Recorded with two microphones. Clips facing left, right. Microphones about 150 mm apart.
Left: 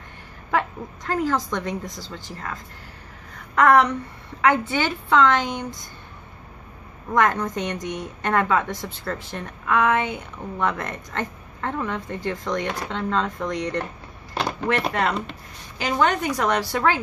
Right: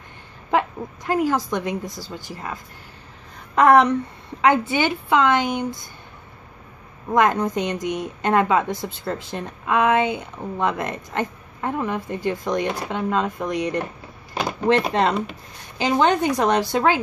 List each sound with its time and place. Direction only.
0.5 s speech: 15° right (ahead or behind)
3.5 s a woman's voice: 20° right (ahead or behind)
7.1 s speech: 15° right (ahead or behind)
14.9 s a woman's voice: 25° right (ahead or behind)